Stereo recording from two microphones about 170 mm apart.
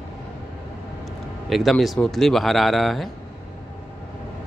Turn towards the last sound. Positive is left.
turn(degrees=0)  # may be behind; listen again after turning